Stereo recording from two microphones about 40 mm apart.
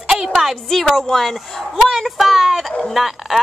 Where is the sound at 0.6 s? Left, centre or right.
Centre.